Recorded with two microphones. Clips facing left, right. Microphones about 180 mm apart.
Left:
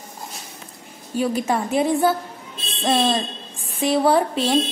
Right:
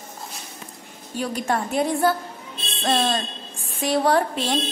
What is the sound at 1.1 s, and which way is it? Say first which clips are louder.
A woman's voice: left 3 dB; centre (ahead or behind).